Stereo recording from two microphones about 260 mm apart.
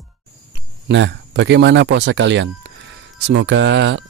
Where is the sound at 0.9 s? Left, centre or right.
Right.